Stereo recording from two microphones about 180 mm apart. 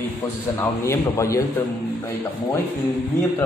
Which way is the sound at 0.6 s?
15° left (ahead or behind).